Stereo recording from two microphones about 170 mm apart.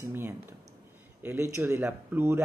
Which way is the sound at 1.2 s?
15° right (ahead or behind).